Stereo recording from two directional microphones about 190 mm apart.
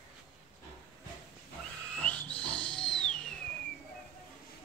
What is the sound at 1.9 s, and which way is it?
Owl, 5° left (ahead or behind).